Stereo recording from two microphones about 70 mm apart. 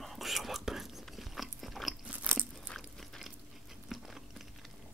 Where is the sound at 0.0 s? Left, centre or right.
Centre.